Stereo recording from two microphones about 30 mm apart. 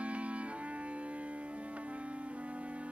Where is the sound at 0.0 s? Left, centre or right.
Right.